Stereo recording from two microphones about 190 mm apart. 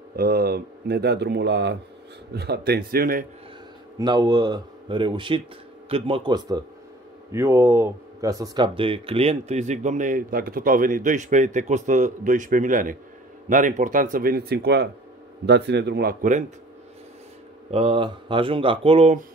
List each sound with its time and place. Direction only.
0.1 s speech: 50° right (ahead or behind)
4.0 s a man's voice: 20° right (ahead or behind); by 16.5 s 40° right (ahead or behind)
17.6 s speech: 30° right (ahead or behind)